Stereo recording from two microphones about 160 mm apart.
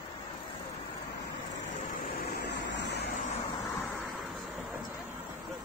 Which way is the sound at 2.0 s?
75° left (ahead or behind).